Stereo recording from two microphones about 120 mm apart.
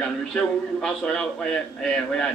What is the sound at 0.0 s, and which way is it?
A man's voice, 5° left (ahead or behind).